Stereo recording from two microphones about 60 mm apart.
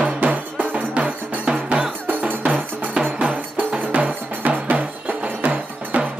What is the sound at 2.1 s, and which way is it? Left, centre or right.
Music, right.